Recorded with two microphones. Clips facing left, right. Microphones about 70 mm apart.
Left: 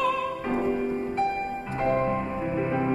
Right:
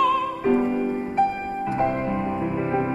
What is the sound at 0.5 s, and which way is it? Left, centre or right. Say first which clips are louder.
Music: right 4 dB; right.